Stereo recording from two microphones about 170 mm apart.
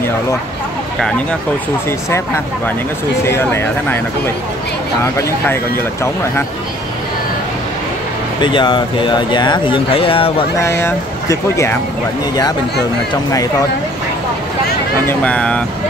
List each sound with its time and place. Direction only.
1.9 s speech: 15° left (ahead or behind)
8.4 s speech: 25° left (ahead or behind)
10.8 s speech: 15° left (ahead or behind)
13.1 s speech: 20° left (ahead or behind)
15.0 s speech: 5° left (ahead or behind)